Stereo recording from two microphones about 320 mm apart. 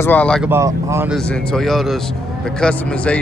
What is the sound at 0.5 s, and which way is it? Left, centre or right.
Speech, centre.